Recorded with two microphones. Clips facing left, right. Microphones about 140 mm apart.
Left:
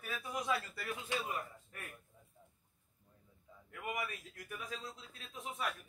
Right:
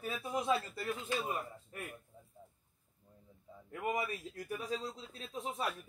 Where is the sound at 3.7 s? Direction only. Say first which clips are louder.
Right 5 dB; 30° right (ahead or behind).